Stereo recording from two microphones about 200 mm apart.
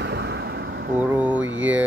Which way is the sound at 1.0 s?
10° right (ahead or behind).